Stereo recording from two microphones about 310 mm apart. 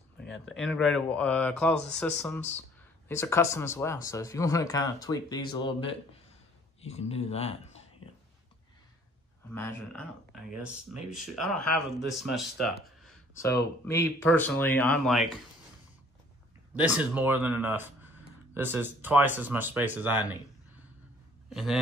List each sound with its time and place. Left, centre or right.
0.5 s speech: centre
9.5 s speech: centre
16.7 s speech: centre
21.5 s a man's voice: centre